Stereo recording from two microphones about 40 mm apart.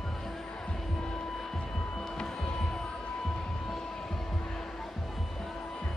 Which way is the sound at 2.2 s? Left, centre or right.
Centre.